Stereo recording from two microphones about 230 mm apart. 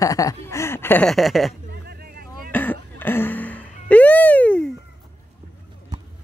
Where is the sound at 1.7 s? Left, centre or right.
Right.